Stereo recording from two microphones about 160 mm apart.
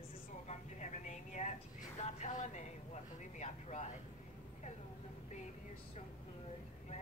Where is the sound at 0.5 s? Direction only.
50° left (ahead or behind).